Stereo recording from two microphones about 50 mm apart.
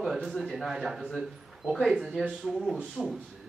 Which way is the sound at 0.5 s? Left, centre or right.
Centre.